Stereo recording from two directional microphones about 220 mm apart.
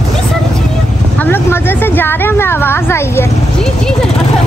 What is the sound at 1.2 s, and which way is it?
Speech, 10° left (ahead or behind).